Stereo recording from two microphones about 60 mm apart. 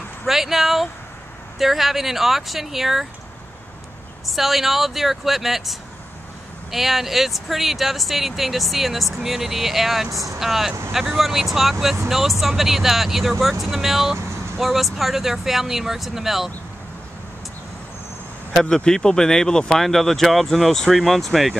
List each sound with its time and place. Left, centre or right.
0.3 s speech: centre
4.3 s speech: centre
18.5 s speech: centre